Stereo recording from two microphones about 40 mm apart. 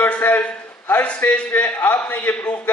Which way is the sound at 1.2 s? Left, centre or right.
Left.